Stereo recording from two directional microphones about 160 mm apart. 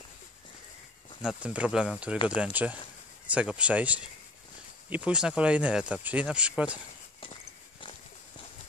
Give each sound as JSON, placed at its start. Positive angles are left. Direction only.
{"t": 1.2, "sound": "speech", "side_deg": -10}